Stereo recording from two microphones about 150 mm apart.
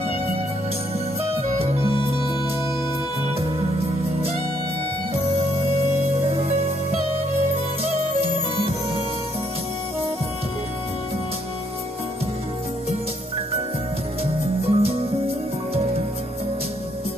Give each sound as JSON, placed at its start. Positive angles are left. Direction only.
{"t": 6.3, "sound": "music", "side_deg": -40}
{"t": 14.7, "sound": "music", "side_deg": -40}